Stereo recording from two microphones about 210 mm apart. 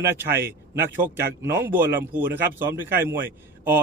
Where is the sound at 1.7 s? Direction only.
10° right (ahead or behind).